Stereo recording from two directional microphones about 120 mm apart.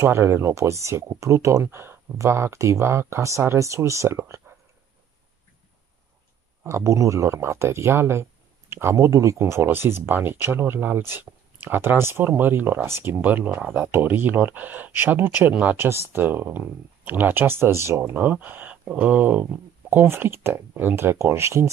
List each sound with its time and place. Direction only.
0.0 s speech: 20° right (ahead or behind)
6.6 s speech: 25° right (ahead or behind)